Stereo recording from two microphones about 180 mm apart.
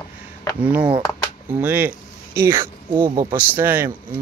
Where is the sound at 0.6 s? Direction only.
10° right (ahead or behind).